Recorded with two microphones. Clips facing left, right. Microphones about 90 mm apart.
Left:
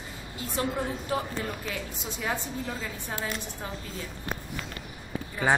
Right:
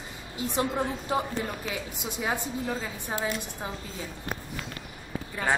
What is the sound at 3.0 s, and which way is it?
Speech, 15° right (ahead or behind).